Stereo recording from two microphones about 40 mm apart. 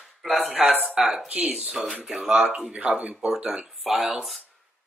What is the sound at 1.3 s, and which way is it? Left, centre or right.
Speech, right.